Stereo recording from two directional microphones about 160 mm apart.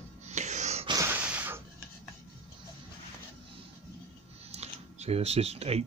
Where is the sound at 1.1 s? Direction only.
10° right (ahead or behind).